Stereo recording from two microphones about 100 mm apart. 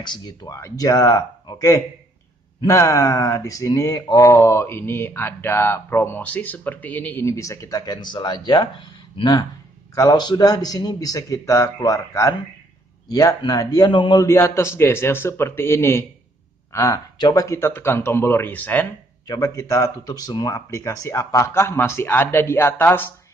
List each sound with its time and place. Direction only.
0.0 s speech: 50° left (ahead or behind)
0.5 s speech: 30° left (ahead or behind); by 14.1 s 50° left (ahead or behind)
14.1 s speech: 30° left (ahead or behind)
19.2 s speech: 35° left (ahead or behind)